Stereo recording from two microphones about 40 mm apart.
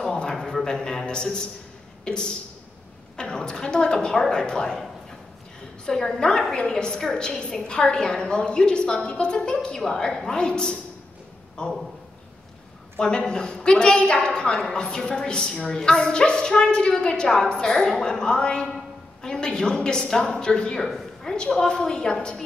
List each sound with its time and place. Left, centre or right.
0.1 s a sound: centre
0.7 s a woman's voice: centre
5.9 s a woman's voice: centre
12.9 s a woman's voice: centre
20.8 s a sound: centre
21.5 s a woman's voice: centre